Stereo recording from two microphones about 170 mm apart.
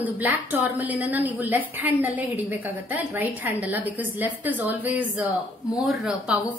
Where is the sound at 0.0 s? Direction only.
10° right (ahead or behind).